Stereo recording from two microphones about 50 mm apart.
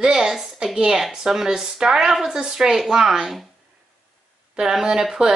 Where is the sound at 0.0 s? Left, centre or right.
Centre.